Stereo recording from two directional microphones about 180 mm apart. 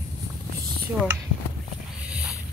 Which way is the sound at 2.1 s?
5° right (ahead or behind).